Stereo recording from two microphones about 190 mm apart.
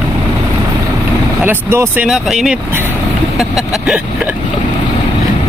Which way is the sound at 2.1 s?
Centre (ahead or behind).